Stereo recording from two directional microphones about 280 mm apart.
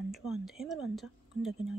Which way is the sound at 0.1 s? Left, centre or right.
Centre.